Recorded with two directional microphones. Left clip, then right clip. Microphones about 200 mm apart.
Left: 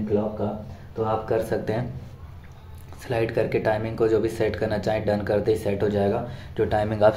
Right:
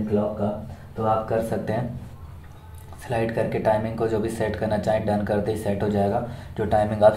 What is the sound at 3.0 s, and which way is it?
Speech, 20° left (ahead or behind).